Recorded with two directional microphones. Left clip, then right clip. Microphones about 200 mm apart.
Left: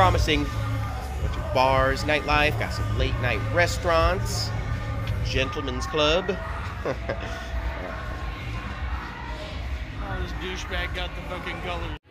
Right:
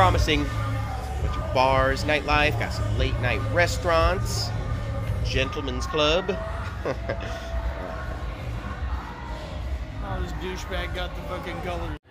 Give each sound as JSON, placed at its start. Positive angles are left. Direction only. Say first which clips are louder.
{"t": 0.0, "sound": "speech", "louder": "even", "side_deg": 0}
{"t": 1.5, "sound": "speech", "louder": "even", "side_deg": 0}
{"t": 10.4, "sound": "speech", "louder": "left 2 dB", "side_deg": -50}